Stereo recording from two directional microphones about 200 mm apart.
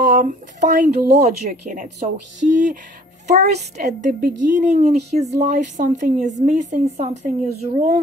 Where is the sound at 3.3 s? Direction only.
35° right (ahead or behind).